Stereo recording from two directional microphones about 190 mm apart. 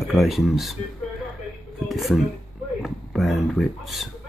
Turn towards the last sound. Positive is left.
turn(degrees=0)  # may be behind; listen again after turning